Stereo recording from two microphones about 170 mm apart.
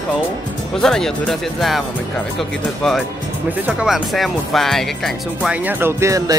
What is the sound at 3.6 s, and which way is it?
Speech, 5° right (ahead or behind).